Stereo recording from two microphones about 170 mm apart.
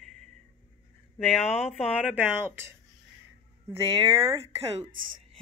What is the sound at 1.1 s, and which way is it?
Speech, centre (ahead or behind).